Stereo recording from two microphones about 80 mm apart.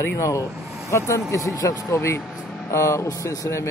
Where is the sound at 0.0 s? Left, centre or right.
Left.